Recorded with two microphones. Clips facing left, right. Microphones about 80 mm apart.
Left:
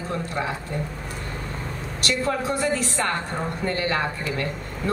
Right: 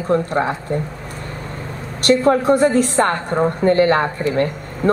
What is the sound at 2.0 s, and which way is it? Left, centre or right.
A woman's voice, right.